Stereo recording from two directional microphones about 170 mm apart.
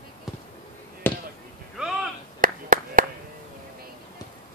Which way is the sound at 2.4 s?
55° right (ahead or behind).